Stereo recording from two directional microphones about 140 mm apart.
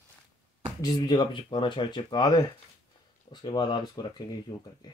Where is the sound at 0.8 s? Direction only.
30° left (ahead or behind).